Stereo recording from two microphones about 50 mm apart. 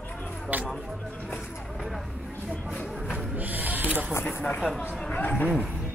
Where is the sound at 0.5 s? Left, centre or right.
Right.